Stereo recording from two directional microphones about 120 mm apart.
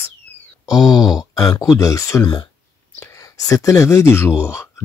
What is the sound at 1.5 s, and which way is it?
Speech, 30° left (ahead or behind).